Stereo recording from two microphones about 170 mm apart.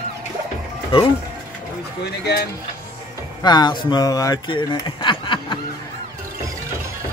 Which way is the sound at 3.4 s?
25° left (ahead or behind).